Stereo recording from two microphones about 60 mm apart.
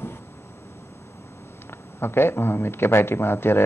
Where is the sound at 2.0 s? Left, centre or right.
Left.